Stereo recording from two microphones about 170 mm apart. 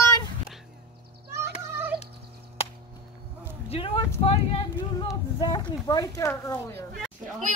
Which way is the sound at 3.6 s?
35° left (ahead or behind).